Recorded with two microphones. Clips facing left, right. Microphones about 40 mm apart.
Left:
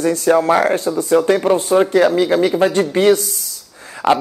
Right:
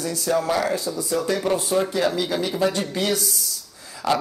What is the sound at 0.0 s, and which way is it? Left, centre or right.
A man's voice, left.